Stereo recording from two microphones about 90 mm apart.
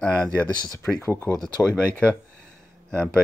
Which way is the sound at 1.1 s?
30° left (ahead or behind).